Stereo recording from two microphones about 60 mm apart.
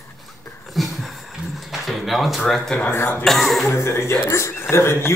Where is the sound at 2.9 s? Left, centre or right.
Left.